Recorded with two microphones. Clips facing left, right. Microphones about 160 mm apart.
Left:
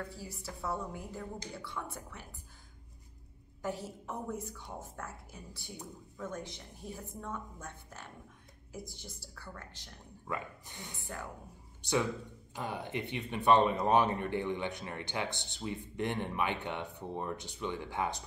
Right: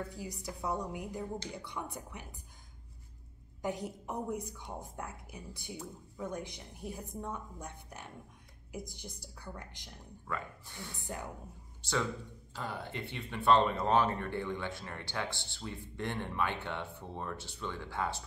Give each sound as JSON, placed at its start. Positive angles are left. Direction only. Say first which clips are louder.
{"t": 0.1, "sound": "a woman's voice", "louder": "right 3 dB", "side_deg": -15}
{"t": 3.6, "sound": "a woman's voice", "louder": "right 1 dB", "side_deg": -15}
{"t": 10.2, "sound": "speech", "louder": "left 1 dB", "side_deg": 20}
{"t": 11.0, "sound": "speech", "louder": "right 2 dB", "side_deg": -20}
{"t": 11.8, "sound": "speech", "louder": "left 3 dB", "side_deg": 15}